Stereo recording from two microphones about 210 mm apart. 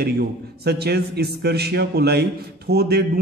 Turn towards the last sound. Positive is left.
turn(degrees=-50)  # may be behind; listen again after turning